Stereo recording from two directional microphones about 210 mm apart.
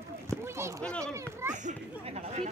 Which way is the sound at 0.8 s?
5° left (ahead or behind).